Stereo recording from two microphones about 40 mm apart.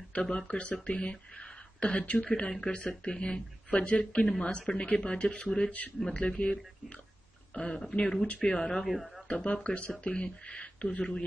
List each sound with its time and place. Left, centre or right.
0.1 s speech: left
8.8 s speech: centre
9.4 s speech: left